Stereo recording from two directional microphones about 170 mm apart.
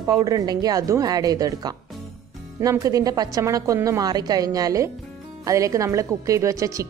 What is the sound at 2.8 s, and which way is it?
Speech, 20° right (ahead or behind).